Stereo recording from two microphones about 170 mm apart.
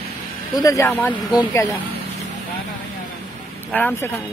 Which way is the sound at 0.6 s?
20° left (ahead or behind).